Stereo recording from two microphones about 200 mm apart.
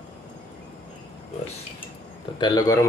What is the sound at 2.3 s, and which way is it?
Speech, 20° left (ahead or behind).